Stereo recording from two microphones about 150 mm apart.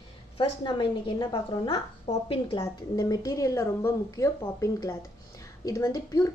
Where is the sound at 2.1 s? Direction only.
40° left (ahead or behind).